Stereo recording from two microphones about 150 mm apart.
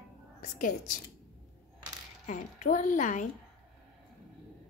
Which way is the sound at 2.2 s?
55° left (ahead or behind).